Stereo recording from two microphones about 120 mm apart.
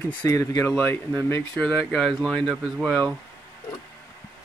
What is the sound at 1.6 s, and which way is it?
Speech, 5° left (ahead or behind).